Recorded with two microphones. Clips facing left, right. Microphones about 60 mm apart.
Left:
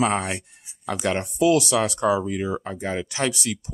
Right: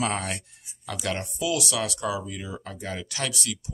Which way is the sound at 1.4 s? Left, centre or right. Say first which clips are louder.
Left 9 dB; left.